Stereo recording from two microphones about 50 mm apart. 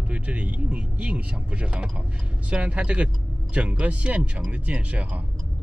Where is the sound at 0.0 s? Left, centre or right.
Right.